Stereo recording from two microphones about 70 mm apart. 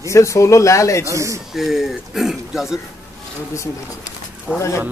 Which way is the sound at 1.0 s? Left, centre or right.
Right.